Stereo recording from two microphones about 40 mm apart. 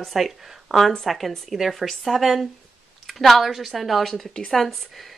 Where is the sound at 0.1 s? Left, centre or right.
Centre.